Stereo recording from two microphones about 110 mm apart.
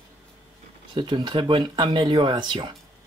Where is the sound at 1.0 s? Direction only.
45° right (ahead or behind).